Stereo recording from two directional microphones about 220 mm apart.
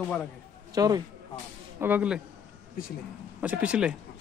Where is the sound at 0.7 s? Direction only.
15° right (ahead or behind).